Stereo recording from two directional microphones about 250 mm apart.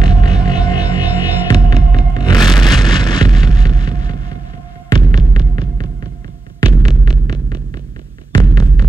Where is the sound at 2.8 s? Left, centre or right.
Centre.